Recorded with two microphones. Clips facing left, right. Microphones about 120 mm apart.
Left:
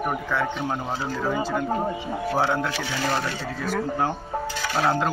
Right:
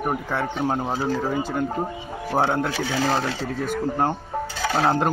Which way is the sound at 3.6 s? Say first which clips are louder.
Right 1 dB; 50° right (ahead or behind).